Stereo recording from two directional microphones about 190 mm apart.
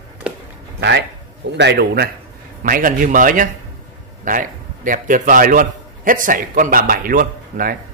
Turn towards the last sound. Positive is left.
turn(degrees=-45)  # may be behind; listen again after turning